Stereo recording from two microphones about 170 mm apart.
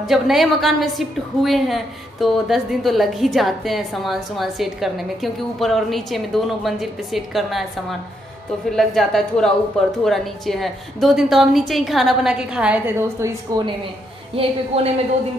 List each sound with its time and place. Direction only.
0.0 s a woman's voice: centre (ahead or behind)
8.6 s a woman's voice: centre (ahead or behind); by 13.7 s 20° right (ahead or behind)
14.3 s speech: 35° right (ahead or behind)